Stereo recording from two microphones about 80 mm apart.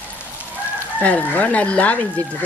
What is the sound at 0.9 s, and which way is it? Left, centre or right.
Speech, centre.